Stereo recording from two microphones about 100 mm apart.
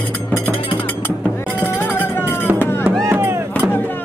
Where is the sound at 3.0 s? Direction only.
25° right (ahead or behind).